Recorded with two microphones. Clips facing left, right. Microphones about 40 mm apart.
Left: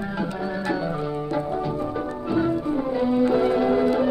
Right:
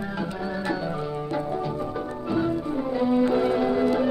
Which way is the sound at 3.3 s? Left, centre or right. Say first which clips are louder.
Left 2 dB; centre.